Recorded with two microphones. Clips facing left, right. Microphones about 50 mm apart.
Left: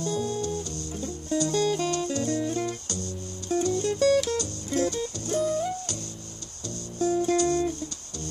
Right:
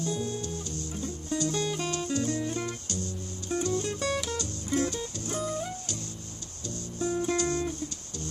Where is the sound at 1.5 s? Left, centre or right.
Centre.